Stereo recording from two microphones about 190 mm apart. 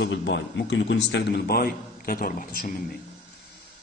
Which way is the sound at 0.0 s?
65° left (ahead or behind).